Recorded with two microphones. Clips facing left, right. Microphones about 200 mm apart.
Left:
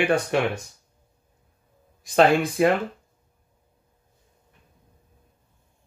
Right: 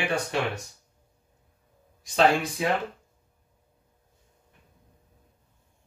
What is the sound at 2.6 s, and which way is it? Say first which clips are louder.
Speech: left 9 dB; 60° left (ahead or behind).